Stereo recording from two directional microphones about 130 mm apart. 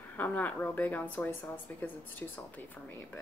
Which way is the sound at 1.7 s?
15° left (ahead or behind).